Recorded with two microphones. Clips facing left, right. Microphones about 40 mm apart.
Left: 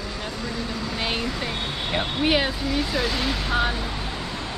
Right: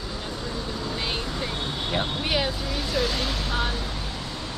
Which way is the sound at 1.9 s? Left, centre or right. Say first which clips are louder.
Left 5 dB; left.